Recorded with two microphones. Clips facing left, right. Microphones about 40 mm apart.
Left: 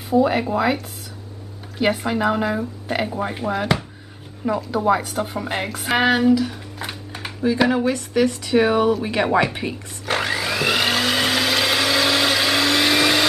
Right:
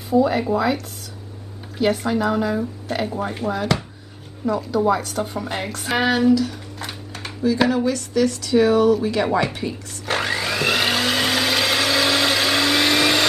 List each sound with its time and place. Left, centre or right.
0.2 s speech: centre
7.7 s speech: left
10.0 s vacuum cleaner: centre